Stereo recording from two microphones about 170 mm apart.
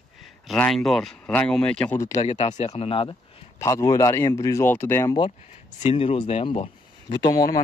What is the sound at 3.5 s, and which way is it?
Speech, 20° left (ahead or behind).